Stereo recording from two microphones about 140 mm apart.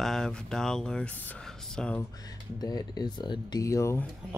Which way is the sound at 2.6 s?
30° left (ahead or behind).